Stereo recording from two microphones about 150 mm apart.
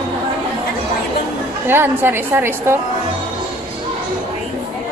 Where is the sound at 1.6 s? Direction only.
15° right (ahead or behind).